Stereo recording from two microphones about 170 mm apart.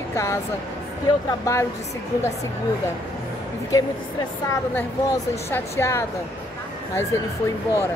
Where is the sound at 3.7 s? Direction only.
20° left (ahead or behind).